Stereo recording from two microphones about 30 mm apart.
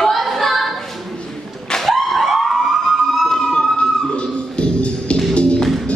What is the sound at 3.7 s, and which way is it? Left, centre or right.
Music, left.